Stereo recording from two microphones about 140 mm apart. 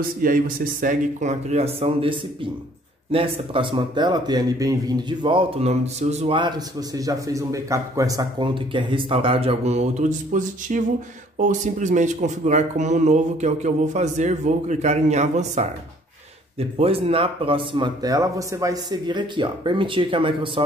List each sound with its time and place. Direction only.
0.0 s a man's voice: 85° right; by 6.3 s 50° right (ahead or behind)
6.3 s a man's voice: 30° right (ahead or behind); by 15.7 s 55° right (ahead or behind)
16.5 s a man's voice: 45° right (ahead or behind)